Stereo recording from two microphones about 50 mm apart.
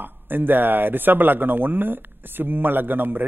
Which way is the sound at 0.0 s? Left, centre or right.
Right.